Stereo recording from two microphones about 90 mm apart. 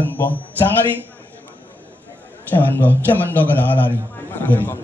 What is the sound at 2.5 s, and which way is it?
A man's voice, 20° left (ahead or behind).